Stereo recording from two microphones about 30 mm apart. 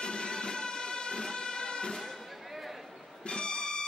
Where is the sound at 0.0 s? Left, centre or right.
Left.